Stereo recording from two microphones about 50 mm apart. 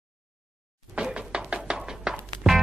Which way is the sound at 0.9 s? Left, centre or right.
Centre.